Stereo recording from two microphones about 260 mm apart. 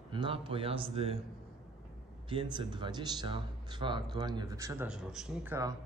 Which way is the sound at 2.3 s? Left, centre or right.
Centre.